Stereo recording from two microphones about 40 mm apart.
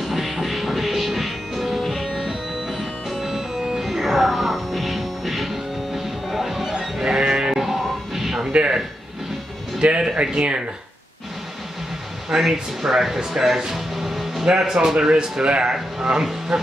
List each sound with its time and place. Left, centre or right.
0.0 s music: centre
7.6 s music: centre
8.5 s a sound: right
9.8 s music: right
10.2 s a man's voice: right
12.3 s a man's voice: centre